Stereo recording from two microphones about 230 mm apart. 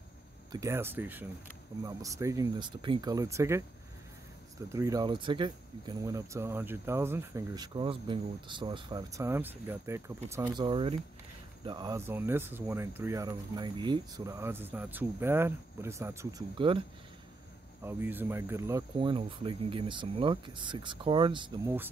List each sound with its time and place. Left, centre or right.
0.5 s speech: centre
4.7 s speech: centre
17.8 s speech: centre